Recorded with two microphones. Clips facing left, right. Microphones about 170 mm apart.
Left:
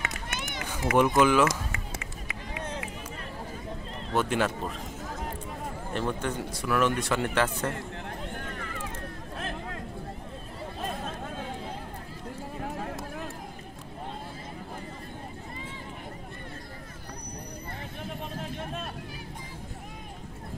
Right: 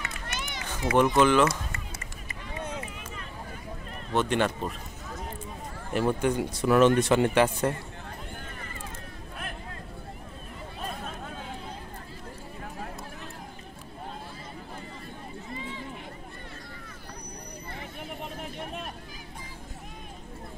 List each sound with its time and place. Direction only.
0.0 s run: 55° left (ahead or behind)
0.7 s speech: 10° left (ahead or behind)
4.1 s a man's voice: 5° left (ahead or behind)
5.9 s speech: 10° right (ahead or behind)
6.6 s speech: 25° right (ahead or behind)
8.5 s a sound: 85° left